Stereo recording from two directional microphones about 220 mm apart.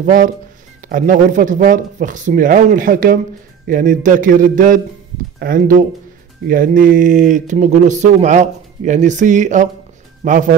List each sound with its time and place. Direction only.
0.0 s speech: 35° right (ahead or behind)